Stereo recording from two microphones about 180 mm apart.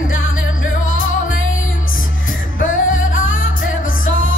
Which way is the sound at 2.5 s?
90° left.